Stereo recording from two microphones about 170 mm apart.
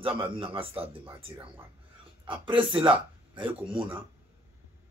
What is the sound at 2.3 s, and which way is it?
Speech, 30° right (ahead or behind).